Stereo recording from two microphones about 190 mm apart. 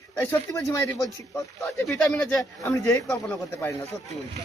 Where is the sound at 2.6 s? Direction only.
15° left (ahead or behind).